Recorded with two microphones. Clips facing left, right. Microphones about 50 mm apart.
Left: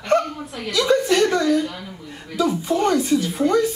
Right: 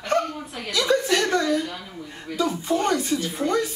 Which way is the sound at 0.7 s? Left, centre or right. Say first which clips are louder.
Left 3 dB; centre.